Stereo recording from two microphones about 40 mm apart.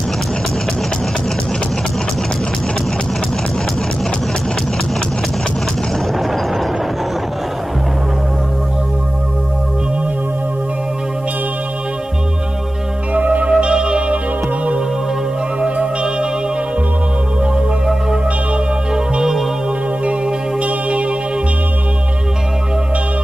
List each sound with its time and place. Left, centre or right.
13.1 s music: right
13.5 s music: right
15.6 s music: right
20.6 s music: right